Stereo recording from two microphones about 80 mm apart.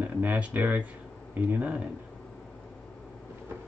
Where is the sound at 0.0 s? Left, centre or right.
Right.